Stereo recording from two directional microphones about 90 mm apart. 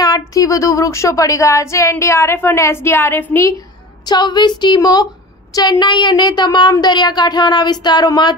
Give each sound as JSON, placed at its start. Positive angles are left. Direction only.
{"t": 0.0, "sound": "speech", "side_deg": 40}
{"t": 4.1, "sound": "speech", "side_deg": 55}